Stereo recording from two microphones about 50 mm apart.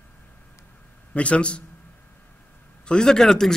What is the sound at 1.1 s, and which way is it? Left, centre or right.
Speech, left.